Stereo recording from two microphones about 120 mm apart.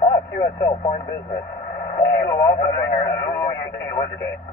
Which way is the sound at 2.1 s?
30° left (ahead or behind).